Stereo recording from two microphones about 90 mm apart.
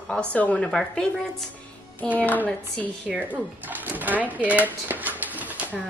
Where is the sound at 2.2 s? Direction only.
20° left (ahead or behind).